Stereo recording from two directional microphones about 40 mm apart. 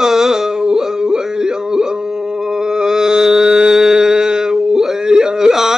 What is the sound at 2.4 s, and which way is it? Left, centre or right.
Mantra, centre.